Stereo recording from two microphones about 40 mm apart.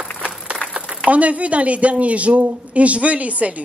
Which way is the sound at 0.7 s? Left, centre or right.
Right.